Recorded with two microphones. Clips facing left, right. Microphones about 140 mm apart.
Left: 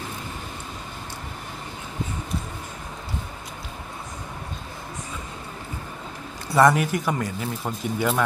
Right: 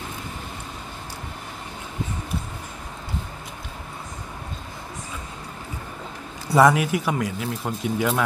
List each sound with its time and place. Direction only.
6.5 s speech: 5° right (ahead or behind)